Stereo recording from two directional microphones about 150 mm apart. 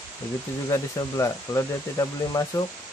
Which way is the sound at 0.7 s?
20° left (ahead or behind).